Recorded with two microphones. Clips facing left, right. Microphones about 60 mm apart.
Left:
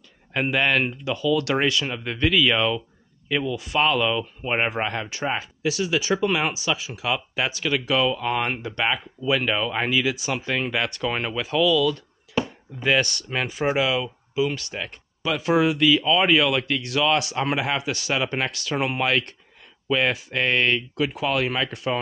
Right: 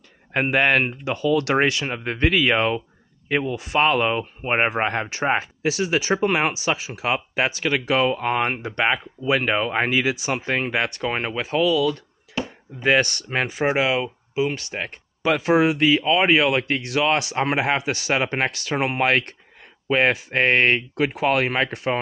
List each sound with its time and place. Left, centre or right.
0.3 s speech: right